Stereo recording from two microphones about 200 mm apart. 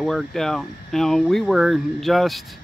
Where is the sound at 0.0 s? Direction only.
Centre (ahead or behind).